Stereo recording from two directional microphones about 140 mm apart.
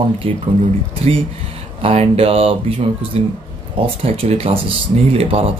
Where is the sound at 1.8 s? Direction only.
45° right (ahead or behind).